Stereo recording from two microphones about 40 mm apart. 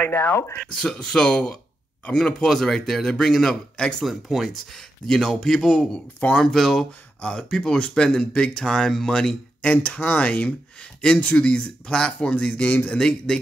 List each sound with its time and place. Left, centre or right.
0.1 s speech: left
0.6 s speech: centre
4.0 s speech: centre
4.5 s speech: centre
7.2 s speech: centre
9.6 s speech: left
12.6 s speech: left
12.9 s speech: centre